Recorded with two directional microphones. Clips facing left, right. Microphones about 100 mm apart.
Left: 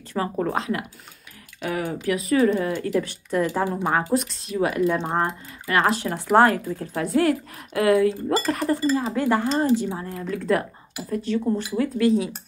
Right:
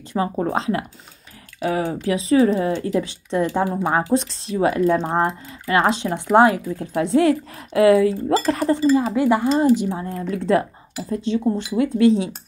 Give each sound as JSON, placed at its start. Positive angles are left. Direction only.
{"t": 0.1, "sound": "speech", "side_deg": -20}